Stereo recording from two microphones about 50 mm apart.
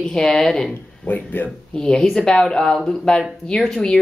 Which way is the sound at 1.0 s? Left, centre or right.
Left.